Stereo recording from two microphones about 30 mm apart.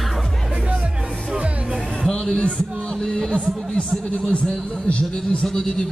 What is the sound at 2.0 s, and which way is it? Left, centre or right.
Music, left.